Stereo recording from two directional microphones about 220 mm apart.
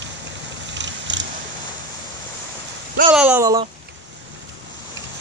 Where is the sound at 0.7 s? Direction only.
55° right (ahead or behind).